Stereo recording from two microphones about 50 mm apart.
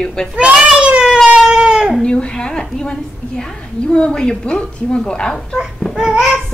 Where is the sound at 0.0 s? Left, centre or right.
Centre.